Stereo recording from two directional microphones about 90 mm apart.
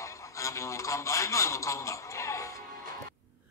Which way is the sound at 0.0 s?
35° left (ahead or behind).